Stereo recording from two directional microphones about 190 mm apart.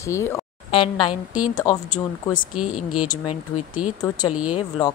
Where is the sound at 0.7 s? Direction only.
30° left (ahead or behind).